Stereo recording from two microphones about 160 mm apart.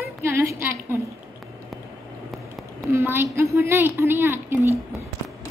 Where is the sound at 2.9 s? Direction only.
15° right (ahead or behind).